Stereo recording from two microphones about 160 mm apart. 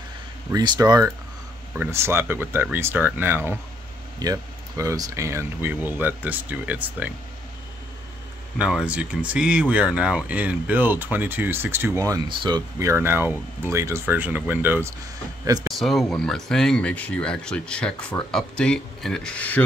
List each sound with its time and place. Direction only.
0.5 s speech: 25° right (ahead or behind)
8.5 s speech: 5° right (ahead or behind)
15.6 s speech: centre (ahead or behind)